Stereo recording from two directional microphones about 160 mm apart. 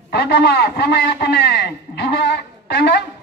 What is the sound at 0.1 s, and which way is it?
A man's voice, 75° left (ahead or behind).